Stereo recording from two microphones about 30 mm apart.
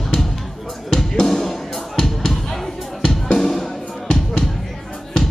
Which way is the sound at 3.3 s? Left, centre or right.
Centre.